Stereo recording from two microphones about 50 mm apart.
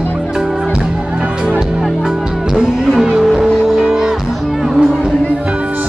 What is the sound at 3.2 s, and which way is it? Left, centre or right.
Music, centre.